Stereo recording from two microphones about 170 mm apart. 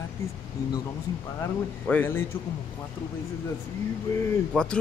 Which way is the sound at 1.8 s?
10° left (ahead or behind).